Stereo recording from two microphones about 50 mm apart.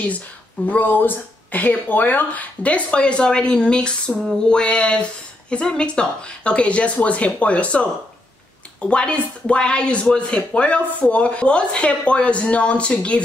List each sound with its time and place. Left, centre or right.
0.7 s speech: left
2.6 s speech: left